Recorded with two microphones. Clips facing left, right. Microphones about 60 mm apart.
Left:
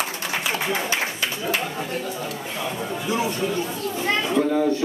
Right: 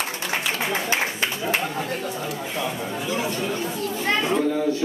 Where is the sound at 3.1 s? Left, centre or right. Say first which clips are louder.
Left 3 dB; centre.